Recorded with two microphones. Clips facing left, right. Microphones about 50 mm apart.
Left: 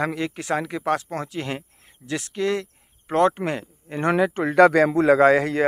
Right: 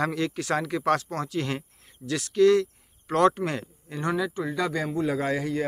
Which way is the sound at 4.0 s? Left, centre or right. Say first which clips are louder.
Left 7 dB; left.